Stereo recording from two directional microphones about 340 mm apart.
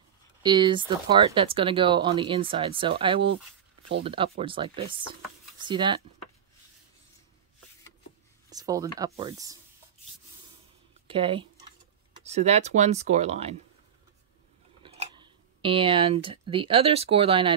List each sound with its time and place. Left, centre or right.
0.4 s speech: centre
8.5 s a sound: centre
9.0 s speech: centre
11.1 s speech: centre
14.8 s speech: centre